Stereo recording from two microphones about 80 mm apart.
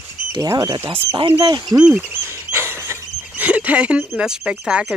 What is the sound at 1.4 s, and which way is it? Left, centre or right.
Speech, right.